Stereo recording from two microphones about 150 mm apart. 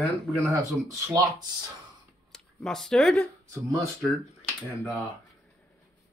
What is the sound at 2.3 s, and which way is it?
Speech, 5° left (ahead or behind).